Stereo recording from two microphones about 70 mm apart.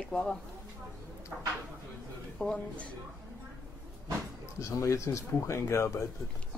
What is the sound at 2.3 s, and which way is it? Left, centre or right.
Speech, centre.